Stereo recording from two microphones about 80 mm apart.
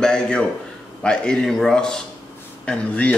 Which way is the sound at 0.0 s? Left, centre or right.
Centre.